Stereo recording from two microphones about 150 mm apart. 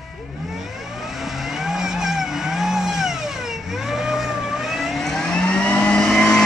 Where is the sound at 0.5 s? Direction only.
Centre (ahead or behind).